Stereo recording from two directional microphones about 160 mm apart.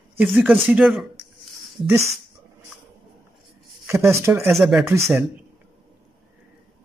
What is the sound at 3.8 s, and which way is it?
Speech, 15° right (ahead or behind).